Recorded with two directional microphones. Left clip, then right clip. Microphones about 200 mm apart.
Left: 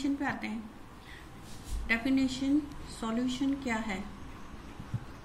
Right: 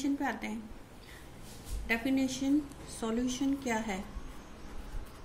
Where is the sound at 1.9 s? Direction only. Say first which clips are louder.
Left 2 dB; 60° right (ahead or behind).